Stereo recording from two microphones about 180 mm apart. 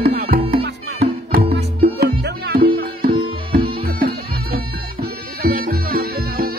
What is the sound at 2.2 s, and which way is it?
Music, 60° right (ahead or behind).